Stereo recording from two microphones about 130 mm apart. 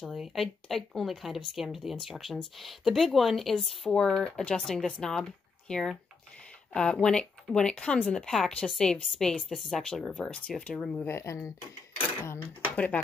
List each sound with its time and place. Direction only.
0.0 s speech: centre (ahead or behind)
11.1 s speech: 20° left (ahead or behind)
12.2 s a sound: 20° left (ahead or behind)
12.7 s speech: 10° left (ahead or behind)